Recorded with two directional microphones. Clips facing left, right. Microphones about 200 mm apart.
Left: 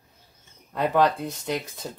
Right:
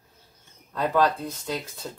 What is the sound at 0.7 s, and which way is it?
Speech, 15° left (ahead or behind).